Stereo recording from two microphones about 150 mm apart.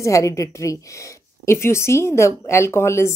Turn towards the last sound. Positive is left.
turn(degrees=20)  # may be behind; listen again after turning